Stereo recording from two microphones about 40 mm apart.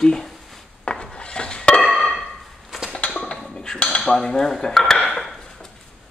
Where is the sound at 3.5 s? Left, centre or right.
Left.